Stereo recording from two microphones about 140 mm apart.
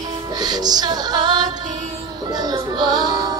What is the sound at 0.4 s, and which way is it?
Music, 30° right (ahead or behind).